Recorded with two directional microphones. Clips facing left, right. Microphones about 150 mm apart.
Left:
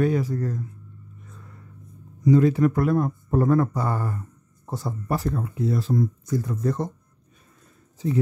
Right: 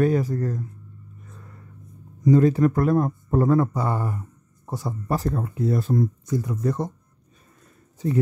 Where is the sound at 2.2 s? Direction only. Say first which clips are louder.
Right 1 dB; 45° right (ahead or behind).